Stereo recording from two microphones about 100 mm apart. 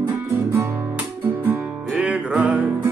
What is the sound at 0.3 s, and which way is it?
Music, 20° right (ahead or behind).